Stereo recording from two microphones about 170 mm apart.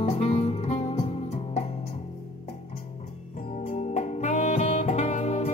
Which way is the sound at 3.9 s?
45° left (ahead or behind).